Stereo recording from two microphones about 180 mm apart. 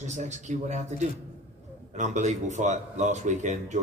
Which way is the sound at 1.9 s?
40° right (ahead or behind).